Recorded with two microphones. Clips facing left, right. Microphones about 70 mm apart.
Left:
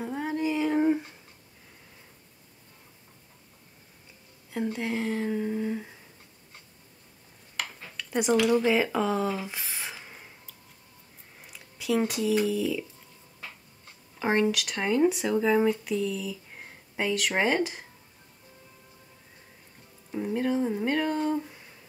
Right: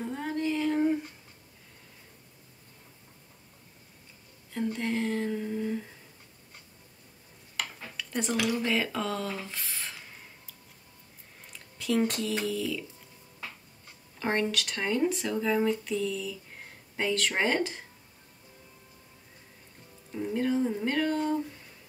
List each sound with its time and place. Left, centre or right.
0.0 s female singing: centre
4.7 s speech: centre
5.4 s humming: centre
7.5 s a sound: centre
8.6 s speech: centre
11.4 s a sound: centre
12.1 s speech: centre
14.2 s speech: centre
20.1 s speech: centre